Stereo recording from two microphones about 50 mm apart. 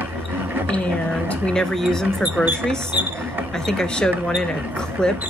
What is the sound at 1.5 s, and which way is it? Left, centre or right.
Speech, centre.